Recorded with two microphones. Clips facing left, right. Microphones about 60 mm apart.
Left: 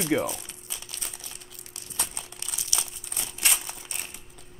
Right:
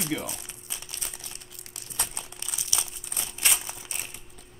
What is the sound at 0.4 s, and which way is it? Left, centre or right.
Crumpling, centre.